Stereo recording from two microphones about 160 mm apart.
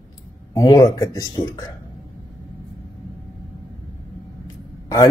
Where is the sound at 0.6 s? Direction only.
20° left (ahead or behind).